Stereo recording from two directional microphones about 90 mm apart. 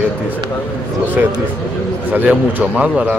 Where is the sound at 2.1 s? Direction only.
20° right (ahead or behind).